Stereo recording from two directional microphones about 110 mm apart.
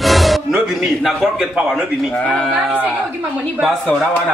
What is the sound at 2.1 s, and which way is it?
Speech, 5° left (ahead or behind).